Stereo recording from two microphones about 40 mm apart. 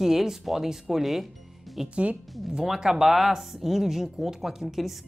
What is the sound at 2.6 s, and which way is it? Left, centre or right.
Speech, centre.